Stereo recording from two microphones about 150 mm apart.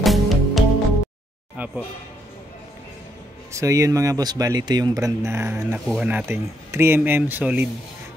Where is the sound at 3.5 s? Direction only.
20° right (ahead or behind).